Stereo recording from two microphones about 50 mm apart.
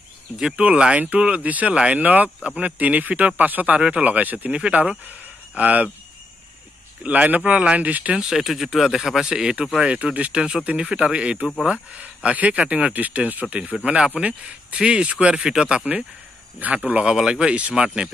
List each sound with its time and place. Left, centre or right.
0.6 s speech: centre
4.5 s speech: right
7.0 s speech: right
8.2 s speech: centre; by 15.4 s right
15.4 s speech: centre
16.5 s speech: right
17.0 s speech: centre